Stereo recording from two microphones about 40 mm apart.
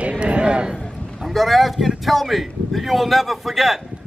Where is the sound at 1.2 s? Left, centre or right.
Centre.